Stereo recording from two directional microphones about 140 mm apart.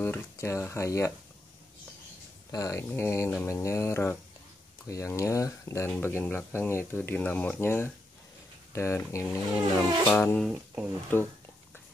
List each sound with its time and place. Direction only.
0.0 s speech: 15° left (ahead or behind)
2.5 s speech: 20° left (ahead or behind)
10.5 s speech: 10° right (ahead or behind)
11.1 s speech: 15° left (ahead or behind)